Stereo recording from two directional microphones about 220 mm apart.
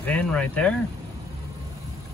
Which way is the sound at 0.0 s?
5° left (ahead or behind).